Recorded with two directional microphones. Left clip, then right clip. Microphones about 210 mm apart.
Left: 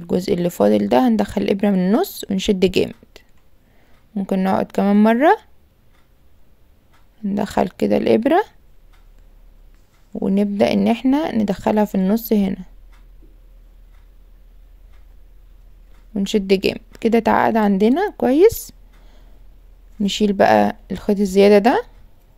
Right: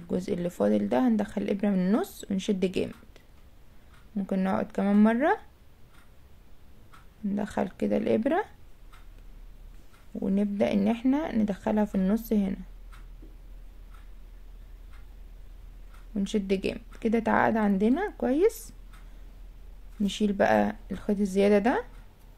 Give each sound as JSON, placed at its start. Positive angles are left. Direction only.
{"t": 0.0, "sound": "speech", "side_deg": 40}
{"t": 7.2, "sound": "speech", "side_deg": 40}
{"t": 10.1, "sound": "speech", "side_deg": 40}
{"t": 16.1, "sound": "speech", "side_deg": 40}
{"t": 20.0, "sound": "speech", "side_deg": 40}